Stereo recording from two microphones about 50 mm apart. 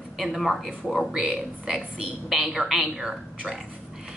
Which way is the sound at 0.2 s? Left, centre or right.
Centre.